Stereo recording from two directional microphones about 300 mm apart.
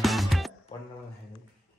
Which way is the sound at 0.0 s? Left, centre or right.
Centre.